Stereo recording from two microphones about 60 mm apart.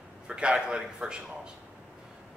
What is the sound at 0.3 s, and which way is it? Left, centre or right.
A man's voice, centre.